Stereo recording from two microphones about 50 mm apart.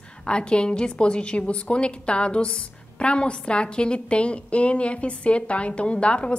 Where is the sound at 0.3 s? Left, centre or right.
Centre.